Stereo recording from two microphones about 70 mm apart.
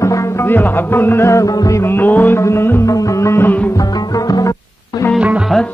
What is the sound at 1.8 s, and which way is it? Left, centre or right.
Music, left.